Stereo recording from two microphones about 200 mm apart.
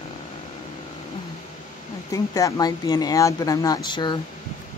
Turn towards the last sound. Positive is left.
turn(degrees=20)  # may be behind; listen again after turning